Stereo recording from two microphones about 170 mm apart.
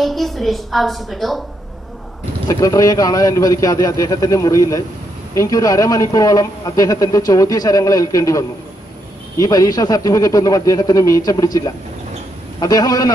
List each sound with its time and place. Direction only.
0.0 s a woman's voice: centre (ahead or behind)
2.4 s a man's voice: 20° left (ahead or behind)